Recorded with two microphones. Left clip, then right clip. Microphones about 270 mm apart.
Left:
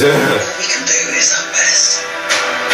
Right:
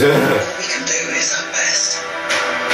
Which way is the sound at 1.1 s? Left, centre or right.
Centre.